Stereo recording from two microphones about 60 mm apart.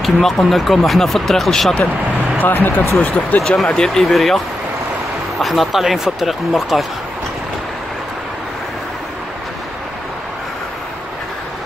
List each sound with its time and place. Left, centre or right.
0.0 s speech: centre
2.4 s speech: left
3.0 s speech: left
3.7 s speech: centre
5.4 s speech: centre